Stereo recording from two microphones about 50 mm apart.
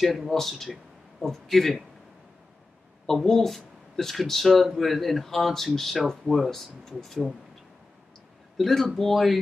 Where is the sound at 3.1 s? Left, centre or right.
Centre.